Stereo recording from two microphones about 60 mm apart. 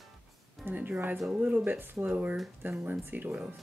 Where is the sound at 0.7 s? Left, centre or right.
Right.